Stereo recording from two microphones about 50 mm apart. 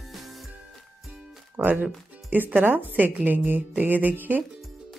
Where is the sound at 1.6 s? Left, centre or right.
Right.